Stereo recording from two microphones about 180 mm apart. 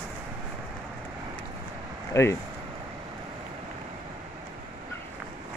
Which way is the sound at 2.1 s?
15° left (ahead or behind).